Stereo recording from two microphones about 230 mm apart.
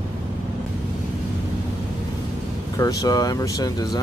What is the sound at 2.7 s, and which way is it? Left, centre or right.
Speech, centre.